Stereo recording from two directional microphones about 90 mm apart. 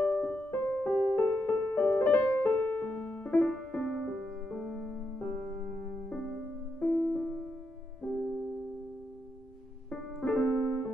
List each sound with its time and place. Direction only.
0.0 s music: 15° left (ahead or behind)
4.5 s music: centre (ahead or behind)
9.8 s piano: 15° left (ahead or behind)